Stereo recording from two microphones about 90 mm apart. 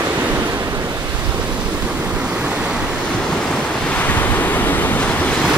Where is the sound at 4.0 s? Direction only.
20° left (ahead or behind).